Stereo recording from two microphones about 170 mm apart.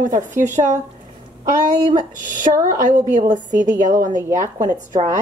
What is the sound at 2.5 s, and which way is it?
Speech, 35° right (ahead or behind).